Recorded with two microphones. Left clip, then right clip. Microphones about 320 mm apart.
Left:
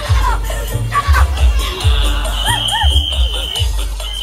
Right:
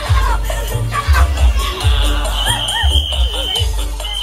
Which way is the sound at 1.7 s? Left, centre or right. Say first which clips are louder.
Left 1 dB; right.